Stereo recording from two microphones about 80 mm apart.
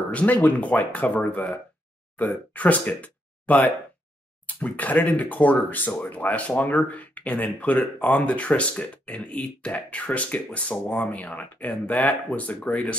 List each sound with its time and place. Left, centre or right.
0.1 s speech: centre